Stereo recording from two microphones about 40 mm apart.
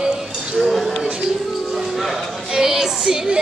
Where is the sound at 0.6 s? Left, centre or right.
Centre.